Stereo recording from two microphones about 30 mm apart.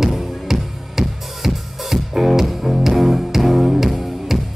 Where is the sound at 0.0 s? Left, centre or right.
Centre.